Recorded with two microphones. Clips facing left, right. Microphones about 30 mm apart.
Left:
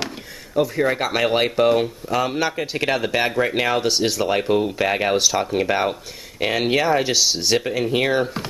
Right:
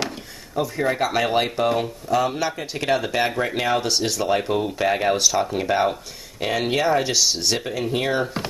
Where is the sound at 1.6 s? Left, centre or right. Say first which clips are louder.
Left 4 dB; centre.